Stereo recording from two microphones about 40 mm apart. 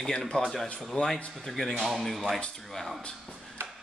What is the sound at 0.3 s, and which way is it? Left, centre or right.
Speech, left.